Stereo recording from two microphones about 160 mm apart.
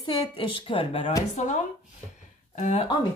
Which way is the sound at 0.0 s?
30° left (ahead or behind).